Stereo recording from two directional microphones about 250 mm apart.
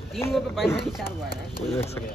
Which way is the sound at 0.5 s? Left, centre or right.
Centre.